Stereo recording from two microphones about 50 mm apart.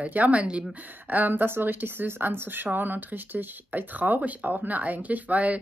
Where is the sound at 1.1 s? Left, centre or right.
Right.